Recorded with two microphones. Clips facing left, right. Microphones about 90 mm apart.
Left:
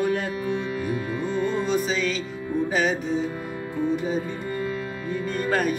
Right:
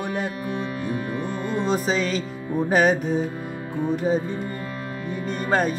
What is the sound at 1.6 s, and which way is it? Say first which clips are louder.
Speech: right 1 dB; 40° right (ahead or behind).